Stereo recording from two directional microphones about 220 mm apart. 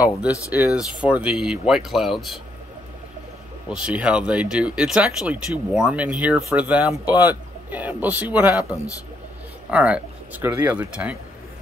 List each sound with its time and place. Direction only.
0.0 s speech: 5° right (ahead or behind)
3.7 s speech: 5° right (ahead or behind)